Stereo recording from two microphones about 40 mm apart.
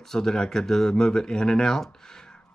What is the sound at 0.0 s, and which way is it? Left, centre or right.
Speech, centre.